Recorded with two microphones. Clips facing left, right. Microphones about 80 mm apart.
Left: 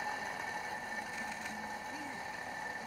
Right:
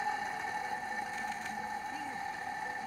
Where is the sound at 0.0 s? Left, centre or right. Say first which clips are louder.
Right 4 dB; right.